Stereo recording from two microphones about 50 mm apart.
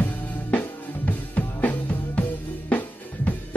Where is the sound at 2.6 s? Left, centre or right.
Left.